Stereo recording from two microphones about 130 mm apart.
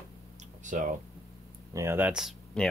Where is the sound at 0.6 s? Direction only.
80° right.